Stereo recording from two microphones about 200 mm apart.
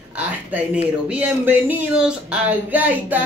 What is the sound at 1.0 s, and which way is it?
Speech, 5° right (ahead or behind).